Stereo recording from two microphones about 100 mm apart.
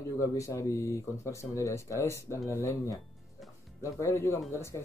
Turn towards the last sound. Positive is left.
turn(degrees=25)  # may be behind; listen again after turning